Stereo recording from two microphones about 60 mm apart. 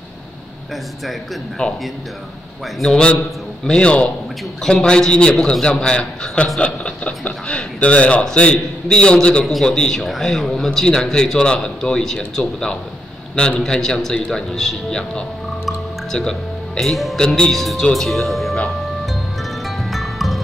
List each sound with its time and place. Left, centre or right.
1.6 s a man's voice: centre
2.8 s a man's voice: centre
19.9 s music: centre